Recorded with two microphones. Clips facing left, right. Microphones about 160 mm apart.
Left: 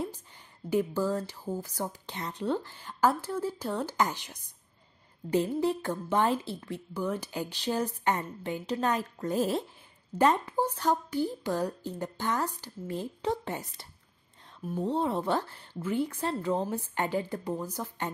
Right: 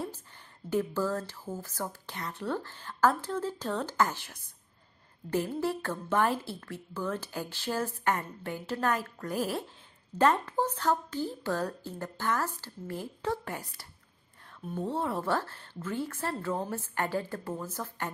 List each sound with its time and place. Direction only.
0.7 s speech: 15° left (ahead or behind)
14.9 s speech: 20° left (ahead or behind)